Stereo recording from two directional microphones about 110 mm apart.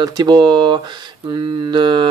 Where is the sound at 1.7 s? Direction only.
45° right (ahead or behind).